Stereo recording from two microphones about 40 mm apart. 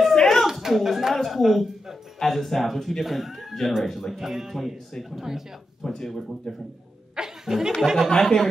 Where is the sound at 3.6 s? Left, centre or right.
Centre.